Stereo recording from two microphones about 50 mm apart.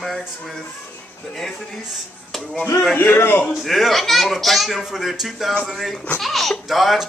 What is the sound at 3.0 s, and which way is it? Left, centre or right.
Speech, left.